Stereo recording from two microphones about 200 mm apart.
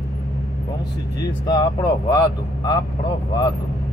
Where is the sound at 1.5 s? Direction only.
20° left (ahead or behind).